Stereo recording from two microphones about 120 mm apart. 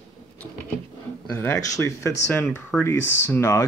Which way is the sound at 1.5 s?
25° left (ahead or behind).